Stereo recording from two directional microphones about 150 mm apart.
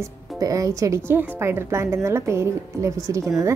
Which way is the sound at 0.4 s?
20° right (ahead or behind).